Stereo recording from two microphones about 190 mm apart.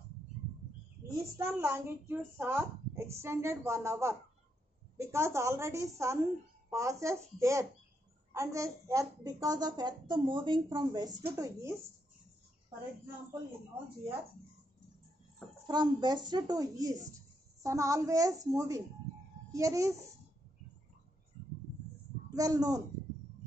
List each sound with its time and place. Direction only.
1.1 s a woman's voice: 15° right (ahead or behind)
15.6 s a woman's voice: 25° right (ahead or behind)
22.3 s a woman's voice: 20° right (ahead or behind)